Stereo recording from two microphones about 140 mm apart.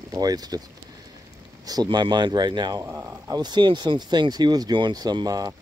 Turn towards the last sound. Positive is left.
turn(degrees=-25)  # may be behind; listen again after turning